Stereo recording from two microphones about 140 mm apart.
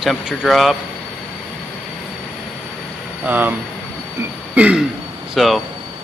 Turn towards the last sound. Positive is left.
turn(degrees=0)  # may be behind; listen again after turning